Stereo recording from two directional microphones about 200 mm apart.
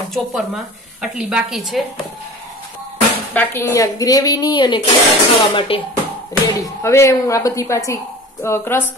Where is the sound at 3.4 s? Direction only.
15° left (ahead or behind).